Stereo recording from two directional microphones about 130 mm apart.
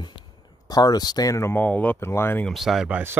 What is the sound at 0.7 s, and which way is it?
Speech, 30° left (ahead or behind).